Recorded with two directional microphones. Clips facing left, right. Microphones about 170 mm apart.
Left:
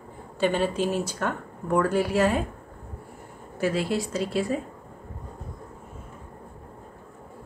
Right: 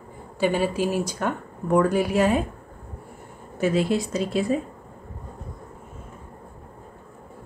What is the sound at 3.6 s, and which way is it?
Speech, 20° right (ahead or behind).